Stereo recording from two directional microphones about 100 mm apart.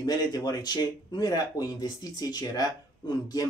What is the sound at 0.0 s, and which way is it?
Speech, 35° left (ahead or behind).